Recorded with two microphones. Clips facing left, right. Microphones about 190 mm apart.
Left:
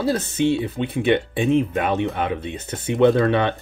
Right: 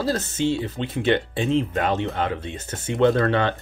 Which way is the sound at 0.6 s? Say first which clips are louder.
Left 3 dB; 15° left (ahead or behind).